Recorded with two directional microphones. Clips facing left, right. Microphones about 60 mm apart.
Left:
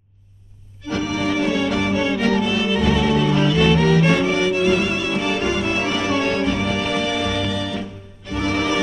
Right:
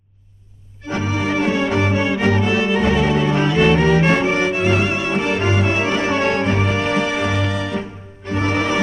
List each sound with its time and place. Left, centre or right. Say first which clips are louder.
0.8 s music: even; right